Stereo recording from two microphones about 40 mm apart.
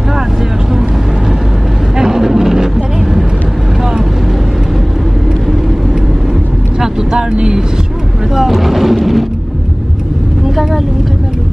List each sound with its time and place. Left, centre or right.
2.0 s vehicle: centre
6.8 s vehicle: centre
8.4 s vehicle: centre
10.5 s vehicle: centre